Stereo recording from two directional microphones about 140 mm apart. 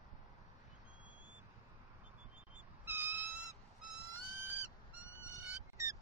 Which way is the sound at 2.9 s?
15° right (ahead or behind).